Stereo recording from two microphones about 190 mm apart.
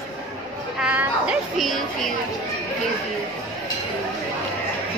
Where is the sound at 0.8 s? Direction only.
5° right (ahead or behind).